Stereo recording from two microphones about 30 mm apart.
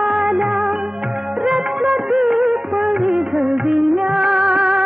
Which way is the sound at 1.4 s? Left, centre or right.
Right.